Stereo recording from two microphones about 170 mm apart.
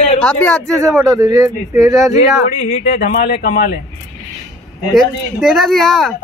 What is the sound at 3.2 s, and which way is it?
Speech, 60° left (ahead or behind).